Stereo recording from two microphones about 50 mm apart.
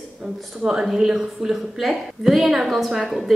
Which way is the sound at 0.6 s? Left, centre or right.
Centre.